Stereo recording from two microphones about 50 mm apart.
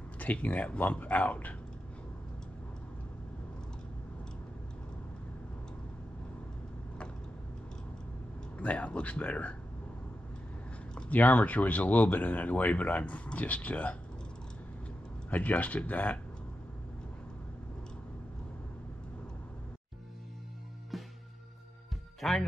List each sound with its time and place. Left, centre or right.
0.2 s speech: left
8.5 s speech: left
11.1 s speech: left
15.2 s speech: left
20.9 s music: centre
22.2 s speech: centre